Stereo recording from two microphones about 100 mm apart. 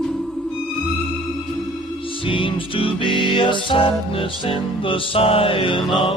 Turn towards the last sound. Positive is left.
turn(degrees=60)  # may be behind; listen again after turning